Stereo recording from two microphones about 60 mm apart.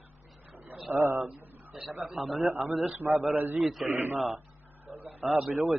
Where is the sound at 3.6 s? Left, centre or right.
Centre.